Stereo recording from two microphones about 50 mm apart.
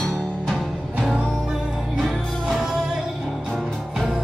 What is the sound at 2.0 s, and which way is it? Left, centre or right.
Music, centre.